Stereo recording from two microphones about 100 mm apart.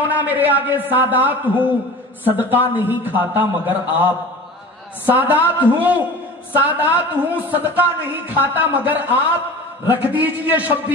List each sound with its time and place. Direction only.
0.0 s a man's voice: 15° right (ahead or behind)